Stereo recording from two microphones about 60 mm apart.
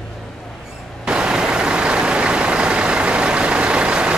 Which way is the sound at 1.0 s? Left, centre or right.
Centre.